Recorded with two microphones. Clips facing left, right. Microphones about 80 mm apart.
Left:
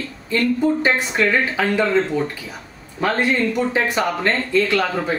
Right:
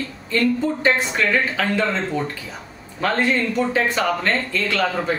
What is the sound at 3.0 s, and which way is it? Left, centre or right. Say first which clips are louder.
Speech: left 1 dB; centre.